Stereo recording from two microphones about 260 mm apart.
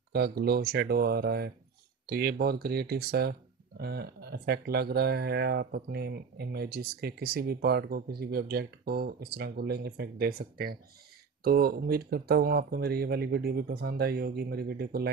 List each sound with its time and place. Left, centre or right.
0.1 s speech: right